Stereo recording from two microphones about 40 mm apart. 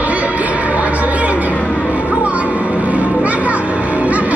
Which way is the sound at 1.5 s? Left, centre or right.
Left.